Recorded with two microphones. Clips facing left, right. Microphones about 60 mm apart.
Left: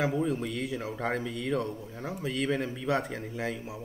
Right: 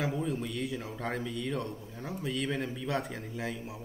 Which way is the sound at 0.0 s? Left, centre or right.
Centre.